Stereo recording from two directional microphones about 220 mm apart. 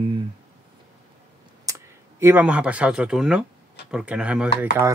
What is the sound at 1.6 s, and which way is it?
Speech, 15° right (ahead or behind).